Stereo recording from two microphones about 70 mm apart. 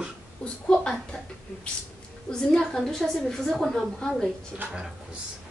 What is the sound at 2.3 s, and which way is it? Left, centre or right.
A woman's voice, centre.